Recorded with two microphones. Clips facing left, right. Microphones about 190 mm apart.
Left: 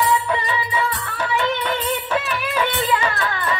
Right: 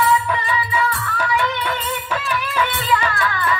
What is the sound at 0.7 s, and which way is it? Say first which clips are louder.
Music: right 2 dB; 25° left (ahead or behind).